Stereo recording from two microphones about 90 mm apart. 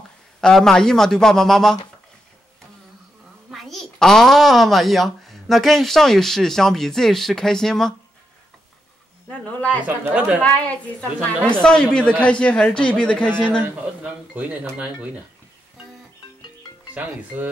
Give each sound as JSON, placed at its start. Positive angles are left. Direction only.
{"t": 0.4, "sound": "a man's voice", "side_deg": 5}
{"t": 3.4, "sound": "a child's voice", "side_deg": 0}
{"t": 9.4, "sound": "speech", "side_deg": 15}
{"t": 9.8, "sound": "speech", "side_deg": -20}
{"t": 10.4, "sound": "speech", "side_deg": 15}
{"t": 11.1, "sound": "speech", "side_deg": -20}
{"t": 11.6, "sound": "speech", "side_deg": 10}
{"t": 13.6, "sound": "speech", "side_deg": -15}